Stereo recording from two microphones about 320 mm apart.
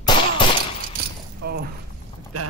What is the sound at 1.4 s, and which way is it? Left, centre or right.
Mechanisms, right.